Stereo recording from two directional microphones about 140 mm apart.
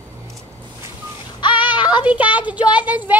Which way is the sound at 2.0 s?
10° right (ahead or behind).